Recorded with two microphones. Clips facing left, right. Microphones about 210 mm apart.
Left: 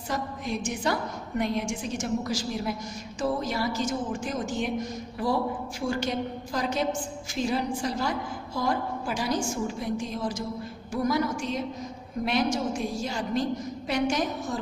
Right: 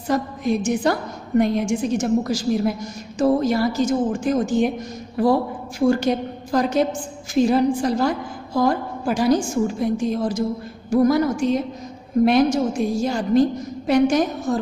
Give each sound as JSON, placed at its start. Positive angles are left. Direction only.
{"t": 0.1, "sound": "a woman's voice", "side_deg": -45}